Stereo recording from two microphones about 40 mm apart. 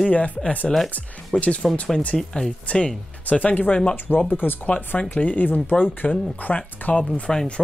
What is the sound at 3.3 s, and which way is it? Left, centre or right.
Speech, left.